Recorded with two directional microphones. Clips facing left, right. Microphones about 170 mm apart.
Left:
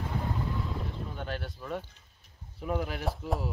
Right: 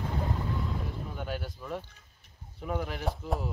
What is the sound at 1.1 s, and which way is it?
Speech, 5° right (ahead or behind).